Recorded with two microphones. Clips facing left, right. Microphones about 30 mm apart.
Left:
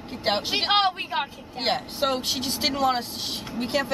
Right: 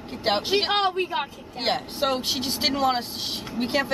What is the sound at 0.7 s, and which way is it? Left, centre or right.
Speech, left.